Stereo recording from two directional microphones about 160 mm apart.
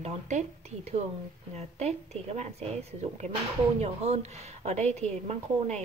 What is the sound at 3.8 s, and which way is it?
A woman's voice, 40° right (ahead or behind).